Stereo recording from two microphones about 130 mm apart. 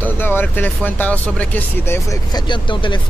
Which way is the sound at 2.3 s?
35° left (ahead or behind).